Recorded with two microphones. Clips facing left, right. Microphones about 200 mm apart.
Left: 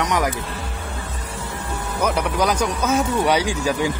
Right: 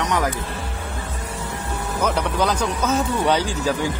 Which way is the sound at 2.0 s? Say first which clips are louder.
Left 1 dB; 10° left (ahead or behind).